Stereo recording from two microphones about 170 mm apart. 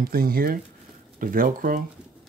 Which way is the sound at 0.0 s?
60° right (ahead or behind).